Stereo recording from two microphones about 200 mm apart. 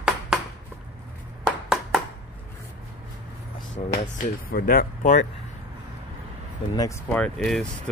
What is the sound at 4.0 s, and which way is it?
Speech, 45° left (ahead or behind).